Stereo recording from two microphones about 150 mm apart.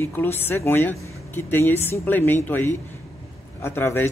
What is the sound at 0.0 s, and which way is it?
Speech, 15° left (ahead or behind).